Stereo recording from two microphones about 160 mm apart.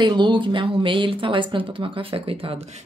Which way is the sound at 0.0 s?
30° right (ahead or behind).